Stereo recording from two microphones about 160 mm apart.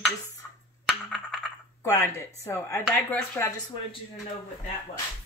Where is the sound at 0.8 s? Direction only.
Centre (ahead or behind).